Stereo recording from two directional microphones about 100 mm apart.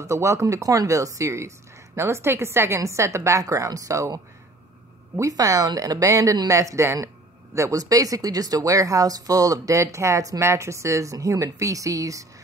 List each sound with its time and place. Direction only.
0.0 s a woman's voice: 30° right (ahead or behind)
5.1 s speech: 35° right (ahead or behind)